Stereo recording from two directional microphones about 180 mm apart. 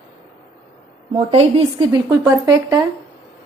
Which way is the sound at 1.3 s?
30° right (ahead or behind).